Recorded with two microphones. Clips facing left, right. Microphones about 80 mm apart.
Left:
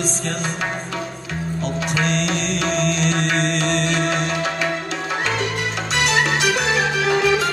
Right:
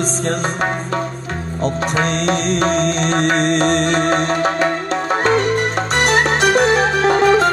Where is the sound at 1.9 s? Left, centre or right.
Right.